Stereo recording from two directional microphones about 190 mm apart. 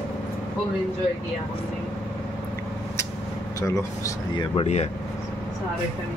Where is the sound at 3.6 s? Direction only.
15° left (ahead or behind); by 4.9 s 35° left (ahead or behind).